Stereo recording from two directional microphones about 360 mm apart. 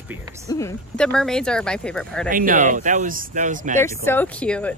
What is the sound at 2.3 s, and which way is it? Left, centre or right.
Speech, right.